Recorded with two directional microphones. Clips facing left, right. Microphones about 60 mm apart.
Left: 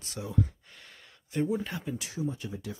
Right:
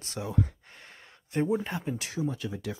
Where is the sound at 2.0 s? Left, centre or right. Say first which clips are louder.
Right 2 dB; right.